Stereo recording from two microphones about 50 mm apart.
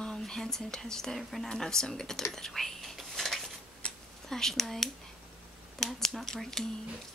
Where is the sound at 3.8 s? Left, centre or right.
Centre.